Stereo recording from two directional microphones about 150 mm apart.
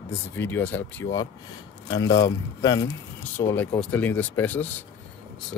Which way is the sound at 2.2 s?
25° left (ahead or behind).